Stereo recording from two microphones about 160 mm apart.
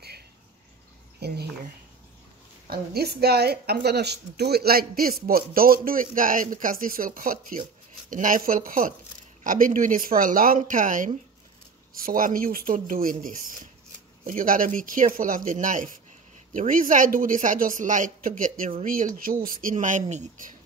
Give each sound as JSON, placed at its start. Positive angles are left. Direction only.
{"t": 1.2, "sound": "speech", "side_deg": -90}
{"t": 2.7, "sound": "a woman's voice", "side_deg": -80}